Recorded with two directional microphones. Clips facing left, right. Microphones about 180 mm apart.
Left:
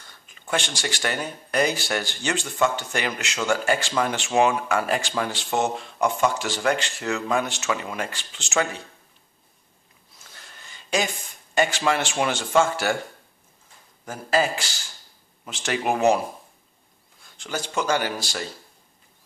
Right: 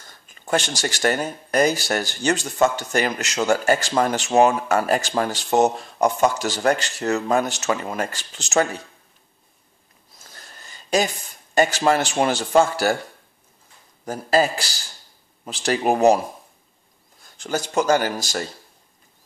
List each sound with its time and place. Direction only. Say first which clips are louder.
0.0 s speech: right 4 dB; 40° right (ahead or behind)
10.1 s a sound: right 3 dB; 40° right (ahead or behind)
11.5 s speech: right 4 dB; 40° right (ahead or behind)
14.0 s speech: right 4 dB; 40° right (ahead or behind)
17.2 s speech: right 5 dB; 40° right (ahead or behind)